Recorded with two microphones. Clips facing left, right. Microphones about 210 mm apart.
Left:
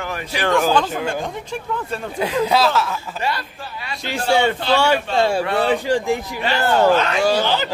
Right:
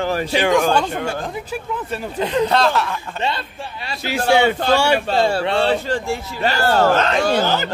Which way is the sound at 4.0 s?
5° right (ahead or behind).